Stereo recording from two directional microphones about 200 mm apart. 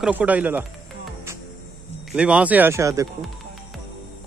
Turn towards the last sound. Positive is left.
turn(degrees=-15)  # may be behind; listen again after turning